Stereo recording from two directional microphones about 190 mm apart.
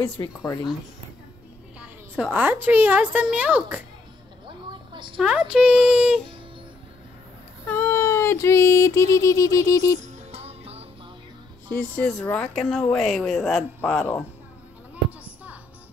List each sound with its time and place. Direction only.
0.2 s speech: 20° left (ahead or behind)
1.8 s a woman's voice: 5° right (ahead or behind)
4.5 s a sound: 25° right (ahead or behind)
5.2 s speech: 5° right (ahead or behind)
7.6 s child singing: 10° left (ahead or behind)
9.9 s music: 35° right (ahead or behind)
11.7 s speech: 5° left (ahead or behind)
13.7 s child singing: 10° left (ahead or behind)
15.0 s children playing: 10° right (ahead or behind)